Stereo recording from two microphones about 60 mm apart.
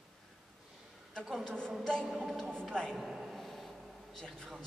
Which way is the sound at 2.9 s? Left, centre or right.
Centre.